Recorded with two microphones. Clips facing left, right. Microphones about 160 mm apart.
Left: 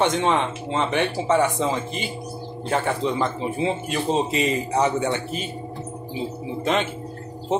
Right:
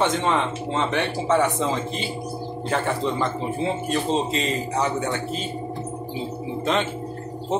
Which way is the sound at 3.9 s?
15° left (ahead or behind).